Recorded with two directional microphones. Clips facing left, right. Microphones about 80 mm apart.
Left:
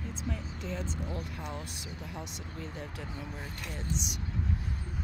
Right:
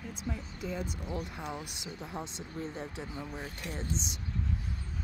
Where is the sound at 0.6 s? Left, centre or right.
Centre; by 4.1 s right.